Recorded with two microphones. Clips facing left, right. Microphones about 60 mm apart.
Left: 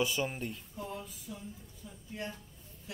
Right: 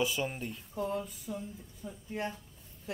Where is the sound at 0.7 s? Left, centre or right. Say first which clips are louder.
Right 10 dB; right.